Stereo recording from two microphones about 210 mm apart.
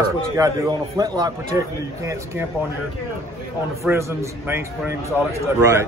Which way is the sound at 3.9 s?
5° right (ahead or behind).